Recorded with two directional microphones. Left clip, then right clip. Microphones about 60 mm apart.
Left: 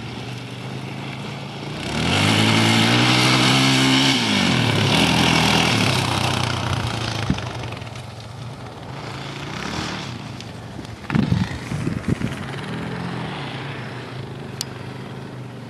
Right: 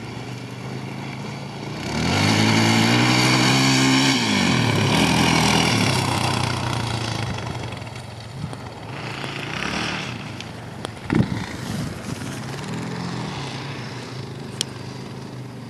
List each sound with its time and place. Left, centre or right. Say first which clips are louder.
1.8 s vehicle: left 2 dB; centre
9.2 s vehicle: right 4 dB; right
11.1 s vehicle: even; left
12.6 s vehicle: left 1 dB; left